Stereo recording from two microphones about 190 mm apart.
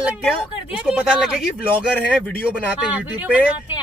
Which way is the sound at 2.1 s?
10° left (ahead or behind).